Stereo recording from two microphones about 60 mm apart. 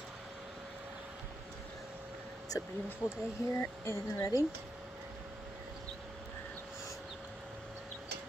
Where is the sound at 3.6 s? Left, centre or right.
Left.